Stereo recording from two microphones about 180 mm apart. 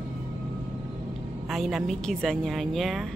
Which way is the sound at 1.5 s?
Centre (ahead or behind).